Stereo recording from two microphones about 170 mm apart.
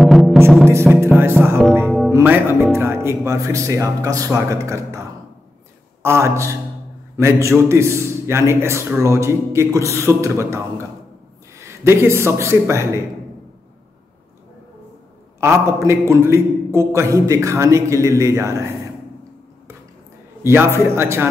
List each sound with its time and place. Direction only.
0.0 s music: centre (ahead or behind)
1.0 s music: 15° right (ahead or behind)
1.9 s music: centre (ahead or behind)
2.1 s music: 10° right (ahead or behind)
2.7 s a man's voice: 15° right (ahead or behind)
6.0 s a man's voice: 15° right (ahead or behind)
15.4 s a man's voice: 15° right (ahead or behind)
20.4 s a man's voice: 15° right (ahead or behind)